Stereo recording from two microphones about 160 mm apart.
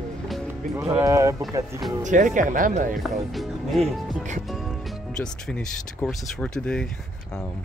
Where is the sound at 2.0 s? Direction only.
55° right (ahead or behind).